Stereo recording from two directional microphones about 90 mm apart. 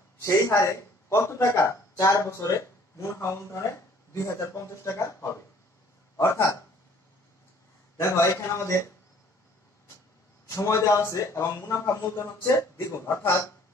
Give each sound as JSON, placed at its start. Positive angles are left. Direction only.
{"t": 0.2, "sound": "a man's voice", "side_deg": 35}
{"t": 8.0, "sound": "a man's voice", "side_deg": 35}
{"t": 10.5, "sound": "a man's voice", "side_deg": 30}